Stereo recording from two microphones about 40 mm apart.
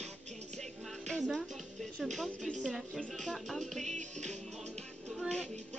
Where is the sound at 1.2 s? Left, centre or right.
Centre.